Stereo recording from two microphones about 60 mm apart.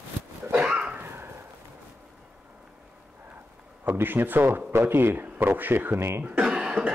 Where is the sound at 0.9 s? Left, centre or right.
Right.